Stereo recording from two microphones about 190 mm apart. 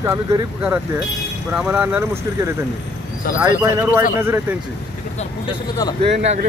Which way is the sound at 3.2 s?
50° left (ahead or behind).